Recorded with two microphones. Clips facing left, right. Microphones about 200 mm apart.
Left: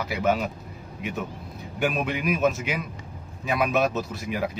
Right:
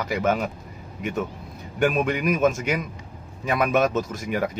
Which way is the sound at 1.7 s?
5° left (ahead or behind).